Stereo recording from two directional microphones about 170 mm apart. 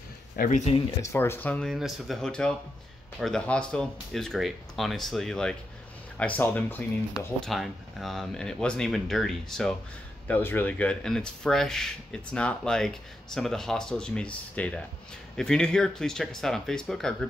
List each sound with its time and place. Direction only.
0.4 s speech: 45° left (ahead or behind)
1.1 s speech: 15° left (ahead or behind)
7.2 s speech: centre (ahead or behind)